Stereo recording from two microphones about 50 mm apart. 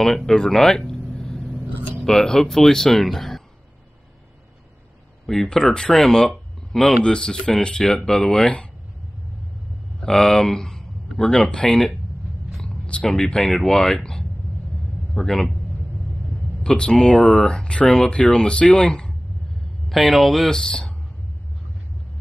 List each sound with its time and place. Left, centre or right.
0.3 s a sound: centre
2.0 s speech: centre
5.2 s speech: centre
9.9 s speech: centre
16.6 s speech: centre
19.9 s speech: centre